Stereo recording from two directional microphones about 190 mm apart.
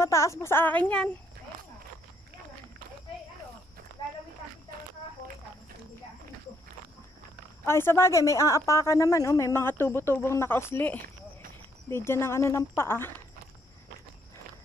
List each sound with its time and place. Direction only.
0.0 s a woman's voice: 15° left (ahead or behind)
4.0 s walk: 25° left (ahead or behind)
7.6 s a woman's voice: 15° left (ahead or behind)